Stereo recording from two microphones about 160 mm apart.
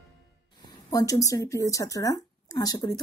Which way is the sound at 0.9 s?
20° left (ahead or behind).